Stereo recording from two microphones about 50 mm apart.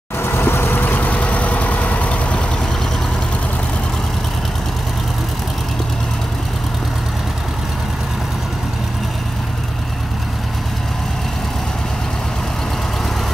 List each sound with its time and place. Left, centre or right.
0.2 s vehicle: left